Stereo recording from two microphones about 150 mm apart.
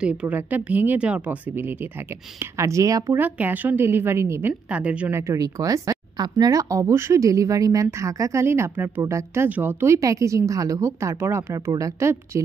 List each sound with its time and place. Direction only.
0.0 s a woman's voice: 10° right (ahead or behind)
2.5 s a woman's voice: 20° right (ahead or behind)
5.3 s speech: 20° right (ahead or behind)